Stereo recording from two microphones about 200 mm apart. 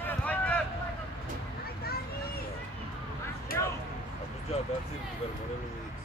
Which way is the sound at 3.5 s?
45° left (ahead or behind).